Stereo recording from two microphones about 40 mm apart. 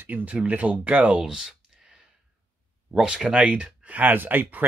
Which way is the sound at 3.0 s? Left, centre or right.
Centre.